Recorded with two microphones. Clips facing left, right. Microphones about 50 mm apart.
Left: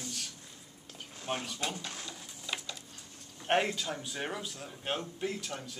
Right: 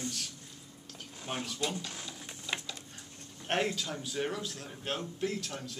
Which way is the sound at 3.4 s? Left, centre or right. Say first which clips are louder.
Left 2 dB; centre.